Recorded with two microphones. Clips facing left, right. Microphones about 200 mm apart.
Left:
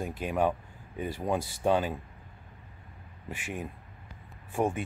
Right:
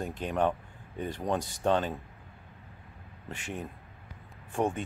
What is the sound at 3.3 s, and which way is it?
Speech, 10° left (ahead or behind).